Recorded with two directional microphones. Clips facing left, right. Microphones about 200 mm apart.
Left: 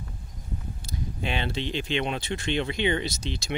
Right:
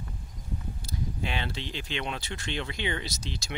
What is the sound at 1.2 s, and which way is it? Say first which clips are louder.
Speech: left 7 dB; 20° left (ahead or behind).